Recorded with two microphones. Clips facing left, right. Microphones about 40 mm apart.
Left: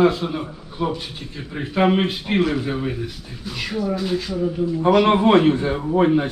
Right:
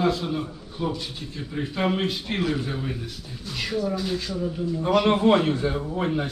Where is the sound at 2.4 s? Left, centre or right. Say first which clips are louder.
Left 6 dB; centre.